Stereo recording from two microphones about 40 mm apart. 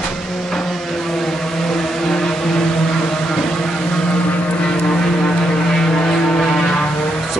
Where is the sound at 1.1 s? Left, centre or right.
Centre.